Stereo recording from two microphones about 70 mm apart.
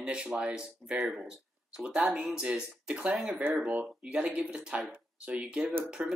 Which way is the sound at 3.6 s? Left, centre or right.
Centre.